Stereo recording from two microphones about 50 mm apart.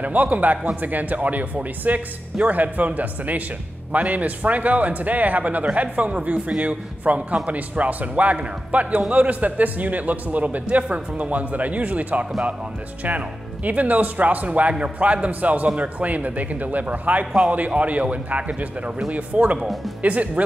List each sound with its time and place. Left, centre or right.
0.0 s a man's voice: right
13.7 s a man's voice: right
19.6 s speech: centre
20.0 s a man's voice: right